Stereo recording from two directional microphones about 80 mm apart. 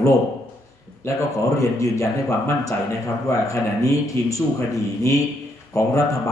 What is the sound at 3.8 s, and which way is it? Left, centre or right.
Speech, left.